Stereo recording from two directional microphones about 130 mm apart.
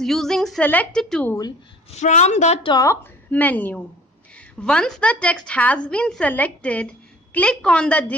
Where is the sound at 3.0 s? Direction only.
10° left (ahead or behind).